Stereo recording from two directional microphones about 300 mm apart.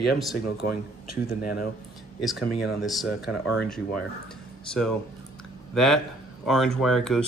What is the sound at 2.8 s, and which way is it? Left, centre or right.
Speech, centre.